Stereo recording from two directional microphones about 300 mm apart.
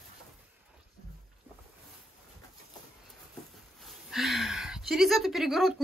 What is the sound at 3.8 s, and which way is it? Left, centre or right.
A woman's voice, centre.